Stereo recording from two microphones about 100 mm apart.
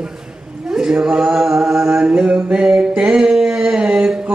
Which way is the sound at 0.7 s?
5° right (ahead or behind).